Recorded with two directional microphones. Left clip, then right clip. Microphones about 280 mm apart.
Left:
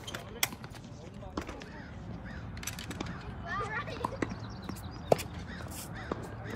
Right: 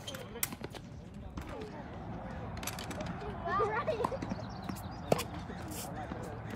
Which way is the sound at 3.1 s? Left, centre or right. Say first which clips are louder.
Right 3 dB; right.